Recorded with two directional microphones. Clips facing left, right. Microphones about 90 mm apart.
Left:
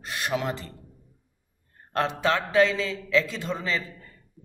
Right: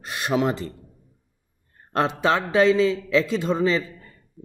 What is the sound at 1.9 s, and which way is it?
A man's voice, 20° right (ahead or behind).